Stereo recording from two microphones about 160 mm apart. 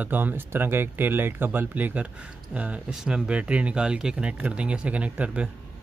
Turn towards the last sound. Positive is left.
turn(degrees=-5)  # may be behind; listen again after turning